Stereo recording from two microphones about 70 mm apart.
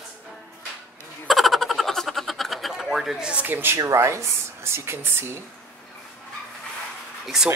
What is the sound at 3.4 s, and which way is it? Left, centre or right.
Speech, right.